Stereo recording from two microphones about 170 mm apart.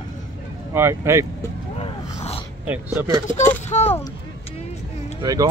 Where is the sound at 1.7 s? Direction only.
35° left (ahead or behind).